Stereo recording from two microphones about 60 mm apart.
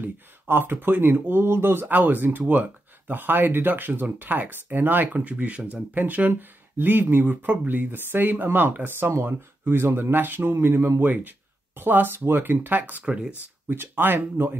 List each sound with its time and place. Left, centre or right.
0.0 s speech: right
11.0 s speech: right
13.0 s speech: centre
13.7 s speech: right